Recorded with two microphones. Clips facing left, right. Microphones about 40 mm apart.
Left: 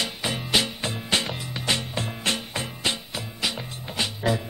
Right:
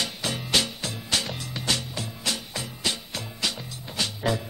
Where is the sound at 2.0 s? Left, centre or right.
Left.